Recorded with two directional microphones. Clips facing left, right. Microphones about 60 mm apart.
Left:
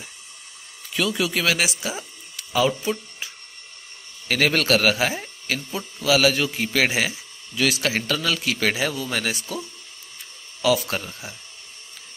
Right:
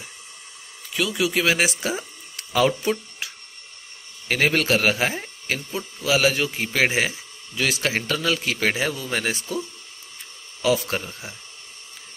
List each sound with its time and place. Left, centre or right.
0.9 s speech: centre
1.6 s speech: right
4.3 s a man's voice: right
10.6 s a man's voice: right